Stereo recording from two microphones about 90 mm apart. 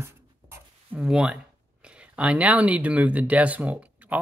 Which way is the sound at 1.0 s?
10° right (ahead or behind).